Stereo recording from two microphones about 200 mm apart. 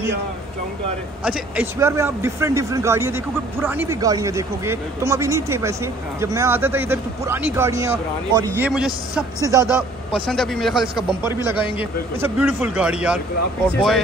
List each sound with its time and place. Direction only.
1.2 s speech: 10° right (ahead or behind)
9.4 s speech: 15° right (ahead or behind)
10.2 s speech: 5° left (ahead or behind)
12.2 s speech: 10° right (ahead or behind)